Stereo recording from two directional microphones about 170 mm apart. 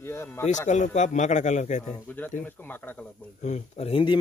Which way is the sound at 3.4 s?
40° left (ahead or behind).